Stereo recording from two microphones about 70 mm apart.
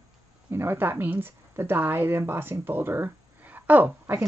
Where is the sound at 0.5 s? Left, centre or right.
Right.